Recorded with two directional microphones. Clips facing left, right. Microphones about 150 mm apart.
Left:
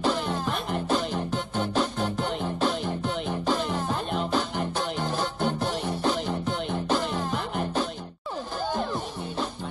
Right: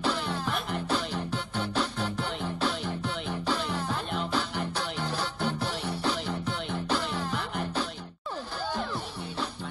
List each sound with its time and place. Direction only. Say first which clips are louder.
0.0 s music: left 4 dB; 45° left (ahead or behind)